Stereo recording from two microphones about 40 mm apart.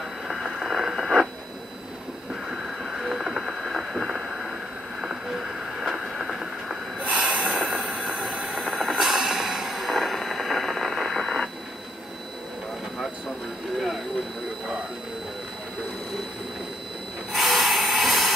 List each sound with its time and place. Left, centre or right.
0.7 s radio: centre
2.5 s a sound: centre
5.3 s vehicle: centre
7.0 s snort: right
7.6 s a sound: centre
8.0 s a sound: centre
8.8 s music: centre
13.7 s vehicle: centre
17.3 s printer: centre